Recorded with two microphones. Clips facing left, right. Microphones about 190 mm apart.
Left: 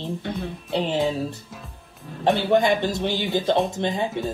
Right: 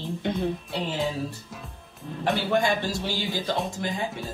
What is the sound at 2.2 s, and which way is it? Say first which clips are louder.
Speech: left 5 dB; 20° left (ahead or behind).